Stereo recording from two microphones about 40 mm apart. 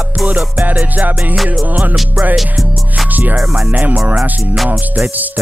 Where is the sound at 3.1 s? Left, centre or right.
Right.